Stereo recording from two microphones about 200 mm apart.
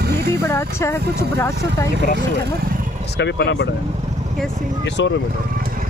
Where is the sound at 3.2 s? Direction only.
60° left (ahead or behind).